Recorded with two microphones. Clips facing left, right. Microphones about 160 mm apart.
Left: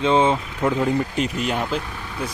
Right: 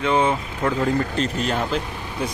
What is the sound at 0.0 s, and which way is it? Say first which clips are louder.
Speech: left 2 dB; 20° left (ahead or behind).